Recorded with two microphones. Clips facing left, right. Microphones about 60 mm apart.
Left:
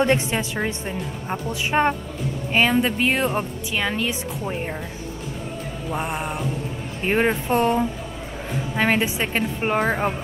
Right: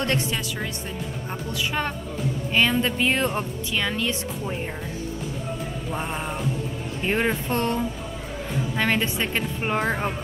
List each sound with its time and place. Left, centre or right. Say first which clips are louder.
0.0 s a woman's voice: left 5 dB; left
2.5 s a woman's voice: left 3 dB; centre
5.9 s a woman's voice: left 4 dB; centre